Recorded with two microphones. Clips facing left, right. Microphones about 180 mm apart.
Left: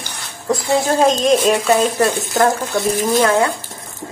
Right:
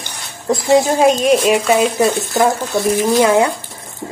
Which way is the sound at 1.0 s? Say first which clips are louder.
Right 2 dB; centre (ahead or behind).